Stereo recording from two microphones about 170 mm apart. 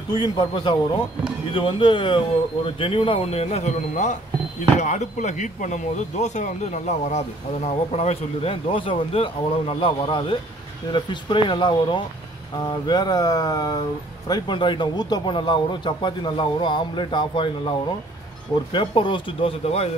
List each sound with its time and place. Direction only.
0.1 s speech: 25° left (ahead or behind)